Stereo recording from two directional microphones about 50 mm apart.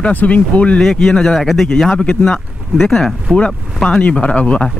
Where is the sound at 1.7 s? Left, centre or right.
Centre.